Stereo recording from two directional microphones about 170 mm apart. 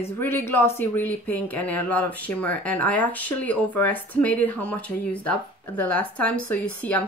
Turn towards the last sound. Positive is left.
turn(degrees=10)  # may be behind; listen again after turning